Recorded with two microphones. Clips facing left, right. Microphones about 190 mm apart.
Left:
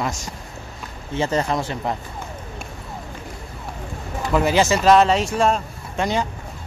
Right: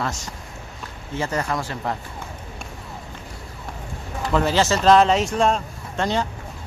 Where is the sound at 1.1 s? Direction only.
25° left (ahead or behind).